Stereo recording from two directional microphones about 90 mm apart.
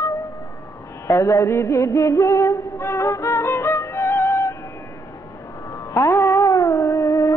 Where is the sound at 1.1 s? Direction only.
35° left (ahead or behind).